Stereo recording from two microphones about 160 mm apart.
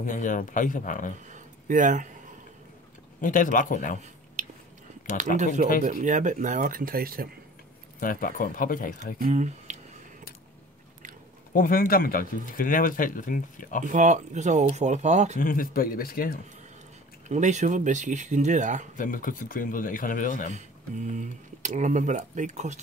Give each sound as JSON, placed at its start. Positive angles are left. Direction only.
{"t": 0.0, "sound": "speech", "side_deg": 55}
{"t": 1.2, "sound": "a sound", "side_deg": -50}
{"t": 3.2, "sound": "speech", "side_deg": 55}
{"t": 4.4, "sound": "a sound", "side_deg": -50}
{"t": 5.9, "sound": "speech", "side_deg": -50}
{"t": 8.0, "sound": "speech", "side_deg": 60}
{"t": 9.2, "sound": "speech", "side_deg": -50}
{"t": 11.5, "sound": "speech", "side_deg": 60}
{"t": 13.8, "sound": "speech", "side_deg": -50}
{"t": 15.3, "sound": "speech", "side_deg": 60}
{"t": 17.3, "sound": "speech", "side_deg": -45}
{"t": 18.9, "sound": "speech", "side_deg": 55}
{"t": 20.5, "sound": "speech", "side_deg": -50}